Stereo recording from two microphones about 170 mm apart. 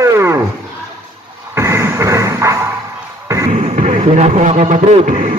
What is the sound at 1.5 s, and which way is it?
Music, 15° right (ahead or behind).